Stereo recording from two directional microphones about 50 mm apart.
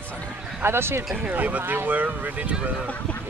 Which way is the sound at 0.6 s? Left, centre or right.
Right.